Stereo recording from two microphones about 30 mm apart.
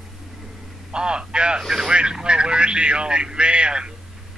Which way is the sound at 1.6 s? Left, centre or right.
Centre.